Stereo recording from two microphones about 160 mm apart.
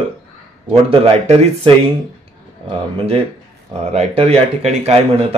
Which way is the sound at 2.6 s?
35° right (ahead or behind).